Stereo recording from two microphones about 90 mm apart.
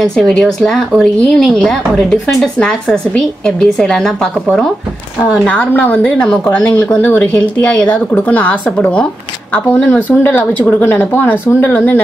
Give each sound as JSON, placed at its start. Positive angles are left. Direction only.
{"t": 0.0, "sound": "speech", "side_deg": 5}
{"t": 5.5, "sound": "speech", "side_deg": 15}
{"t": 9.9, "sound": "speech", "side_deg": -15}
{"t": 10.2, "sound": "speech", "side_deg": 25}